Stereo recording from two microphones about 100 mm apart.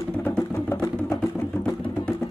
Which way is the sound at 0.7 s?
25° left (ahead or behind).